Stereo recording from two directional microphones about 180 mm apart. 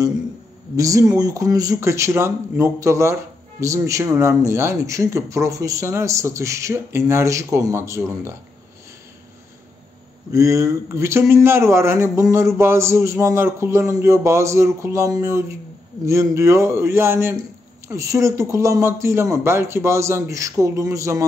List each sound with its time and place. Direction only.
0.7 s speech: 20° right (ahead or behind)
10.3 s speech: 15° right (ahead or behind)